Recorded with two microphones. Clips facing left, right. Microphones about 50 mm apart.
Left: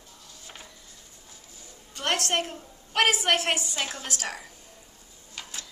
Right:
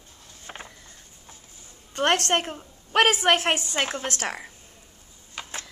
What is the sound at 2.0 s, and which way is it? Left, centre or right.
A woman's voice, right.